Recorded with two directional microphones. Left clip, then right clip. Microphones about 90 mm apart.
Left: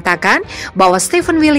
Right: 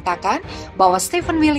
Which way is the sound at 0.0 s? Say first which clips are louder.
Left 7 dB; 55° left (ahead or behind).